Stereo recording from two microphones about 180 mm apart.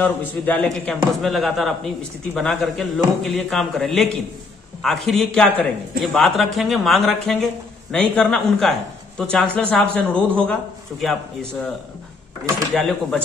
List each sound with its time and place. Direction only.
0.0 s a man's voice: 10° left (ahead or behind)
12.7 s a man's voice: centre (ahead or behind)